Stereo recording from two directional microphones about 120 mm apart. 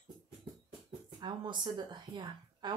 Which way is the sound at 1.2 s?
40° right (ahead or behind).